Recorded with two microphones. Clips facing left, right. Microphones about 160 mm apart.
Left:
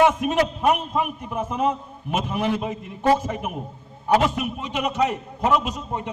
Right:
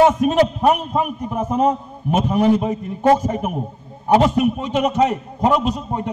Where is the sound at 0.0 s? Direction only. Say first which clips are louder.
Right 5 dB; 35° right (ahead or behind).